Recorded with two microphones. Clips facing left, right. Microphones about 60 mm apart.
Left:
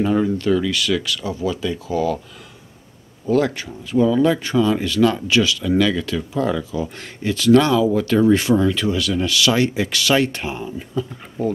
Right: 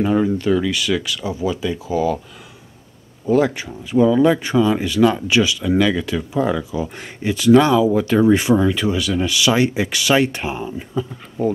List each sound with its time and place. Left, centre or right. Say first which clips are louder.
0.0 s speech: right 1 dB; centre
3.3 s speech: right 2 dB; centre